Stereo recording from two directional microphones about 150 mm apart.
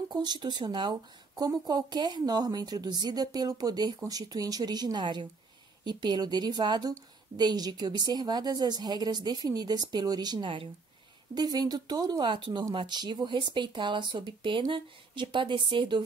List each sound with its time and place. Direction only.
0.1 s speech: 30° right (ahead or behind)